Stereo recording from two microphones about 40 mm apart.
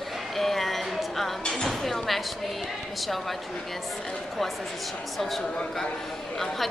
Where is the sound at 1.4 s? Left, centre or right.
Centre.